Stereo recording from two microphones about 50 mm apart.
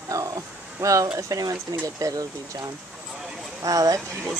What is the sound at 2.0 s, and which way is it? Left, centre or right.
Speech, right.